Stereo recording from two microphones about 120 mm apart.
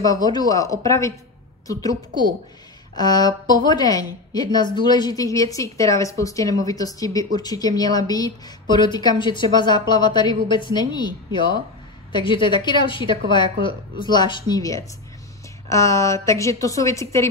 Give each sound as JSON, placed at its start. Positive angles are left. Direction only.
{"t": 0.0, "sound": "a woman's voice", "side_deg": 30}